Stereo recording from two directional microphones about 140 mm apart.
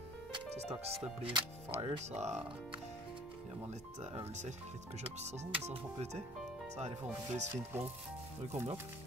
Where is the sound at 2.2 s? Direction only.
50° right (ahead or behind).